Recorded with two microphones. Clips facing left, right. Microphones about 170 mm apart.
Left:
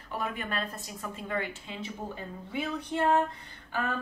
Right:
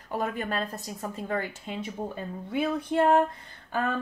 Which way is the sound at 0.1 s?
40° right (ahead or behind).